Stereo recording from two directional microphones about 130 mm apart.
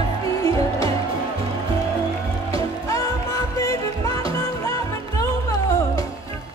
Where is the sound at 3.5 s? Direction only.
25° left (ahead or behind).